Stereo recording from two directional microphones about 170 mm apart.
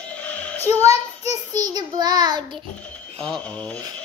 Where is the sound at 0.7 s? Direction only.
20° right (ahead or behind).